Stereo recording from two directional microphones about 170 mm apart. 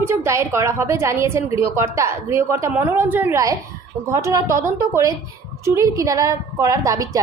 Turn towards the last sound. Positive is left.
turn(degrees=-20)  # may be behind; listen again after turning